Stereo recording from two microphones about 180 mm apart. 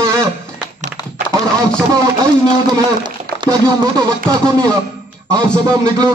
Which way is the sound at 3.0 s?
25° right (ahead or behind).